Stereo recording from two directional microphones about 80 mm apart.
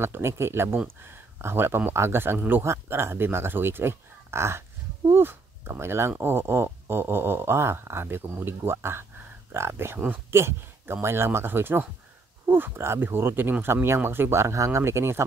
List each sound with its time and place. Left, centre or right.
0.0 s speech: right
2.6 s speech: right